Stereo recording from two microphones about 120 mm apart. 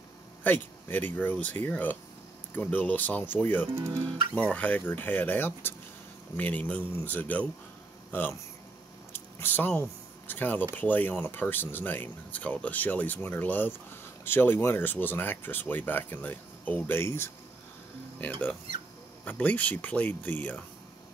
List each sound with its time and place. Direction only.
0.4 s speech: 15° left (ahead or behind)
3.7 s speech: 25° right (ahead or behind)
4.4 s speech: 10° left (ahead or behind)
19.2 s speech: 10° left (ahead or behind)